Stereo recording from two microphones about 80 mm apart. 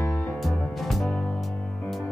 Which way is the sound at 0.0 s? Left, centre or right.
Left.